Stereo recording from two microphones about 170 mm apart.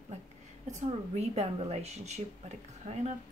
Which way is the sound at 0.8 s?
40° right (ahead or behind).